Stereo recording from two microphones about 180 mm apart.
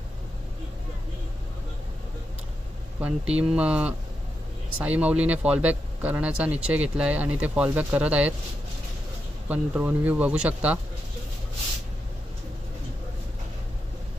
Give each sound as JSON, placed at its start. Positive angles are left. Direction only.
{"t": 3.0, "sound": "speech", "side_deg": -5}
{"t": 9.5, "sound": "speech", "side_deg": -10}